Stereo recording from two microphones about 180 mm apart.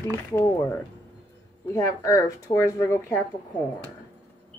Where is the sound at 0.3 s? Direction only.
15° left (ahead or behind).